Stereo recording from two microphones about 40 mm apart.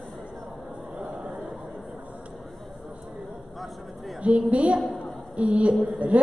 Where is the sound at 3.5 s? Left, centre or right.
Centre.